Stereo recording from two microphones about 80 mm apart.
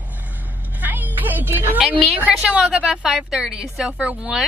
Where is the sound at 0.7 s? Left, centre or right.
Right.